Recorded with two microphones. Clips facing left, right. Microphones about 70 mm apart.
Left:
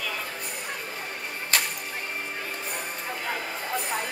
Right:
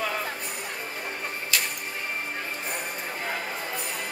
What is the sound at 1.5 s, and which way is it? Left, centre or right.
Music, left.